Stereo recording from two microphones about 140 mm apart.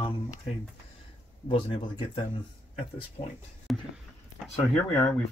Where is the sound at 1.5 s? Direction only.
40° left (ahead or behind).